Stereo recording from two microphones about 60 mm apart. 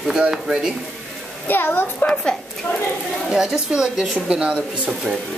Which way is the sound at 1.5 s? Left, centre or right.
Left.